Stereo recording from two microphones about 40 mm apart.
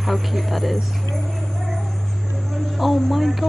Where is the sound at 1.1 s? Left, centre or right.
Centre.